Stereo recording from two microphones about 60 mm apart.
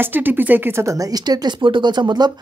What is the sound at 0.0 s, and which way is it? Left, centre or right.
Speech, right.